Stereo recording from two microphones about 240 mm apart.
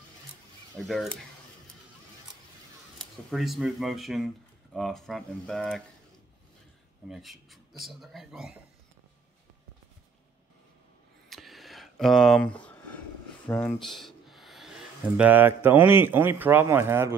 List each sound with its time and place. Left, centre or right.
0.7 s a man's voice: centre
3.0 s a man's voice: centre
7.1 s a man's voice: centre
11.2 s a sound: centre
13.5 s speech: centre